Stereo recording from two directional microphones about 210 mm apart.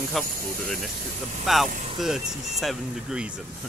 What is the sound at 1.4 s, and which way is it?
Speech, centre (ahead or behind).